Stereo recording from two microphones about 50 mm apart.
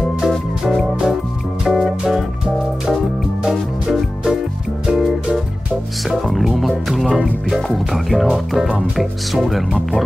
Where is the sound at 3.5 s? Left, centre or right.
Centre.